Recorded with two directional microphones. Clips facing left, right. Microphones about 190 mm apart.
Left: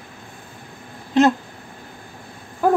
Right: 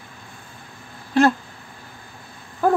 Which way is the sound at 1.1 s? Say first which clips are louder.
Left 1 dB; 20° left (ahead or behind).